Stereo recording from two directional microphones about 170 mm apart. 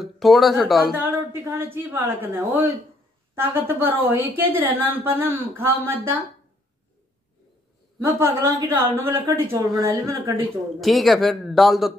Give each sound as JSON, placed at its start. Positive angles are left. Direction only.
{"t": 0.0, "sound": "speech", "side_deg": 0}
{"t": 0.9, "sound": "a woman's voice", "side_deg": -10}
{"t": 8.2, "sound": "a woman's voice", "side_deg": -15}
{"t": 10.8, "sound": "speech", "side_deg": 0}